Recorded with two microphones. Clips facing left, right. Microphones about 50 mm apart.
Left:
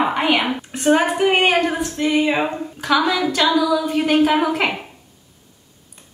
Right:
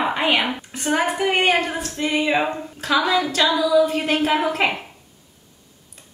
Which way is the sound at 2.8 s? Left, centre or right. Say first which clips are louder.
Left 1 dB; left.